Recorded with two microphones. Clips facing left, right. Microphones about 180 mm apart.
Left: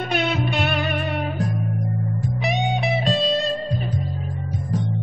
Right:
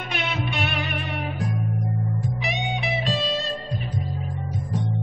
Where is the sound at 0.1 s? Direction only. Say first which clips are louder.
Left 5 dB; 35° left (ahead or behind).